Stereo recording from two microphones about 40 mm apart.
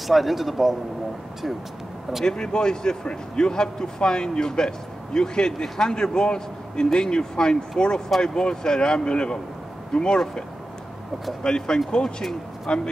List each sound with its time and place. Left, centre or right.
0.0 s speech: centre
2.2 s speech: left
11.4 s speech: centre